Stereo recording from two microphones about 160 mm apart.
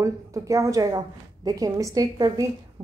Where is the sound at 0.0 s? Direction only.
20° right (ahead or behind).